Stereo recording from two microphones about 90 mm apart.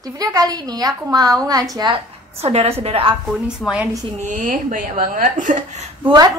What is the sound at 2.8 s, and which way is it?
Speech, 90° right.